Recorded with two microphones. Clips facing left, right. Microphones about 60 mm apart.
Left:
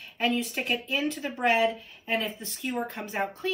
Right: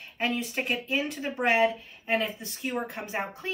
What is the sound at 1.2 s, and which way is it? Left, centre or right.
Speech, right.